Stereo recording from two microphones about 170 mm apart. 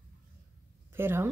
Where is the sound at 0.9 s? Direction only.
15° right (ahead or behind).